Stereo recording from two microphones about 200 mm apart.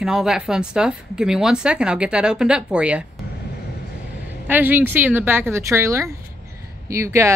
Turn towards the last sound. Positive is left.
turn(degrees=-15)  # may be behind; listen again after turning